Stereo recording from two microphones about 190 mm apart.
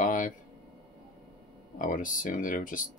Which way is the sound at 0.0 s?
45° left (ahead or behind).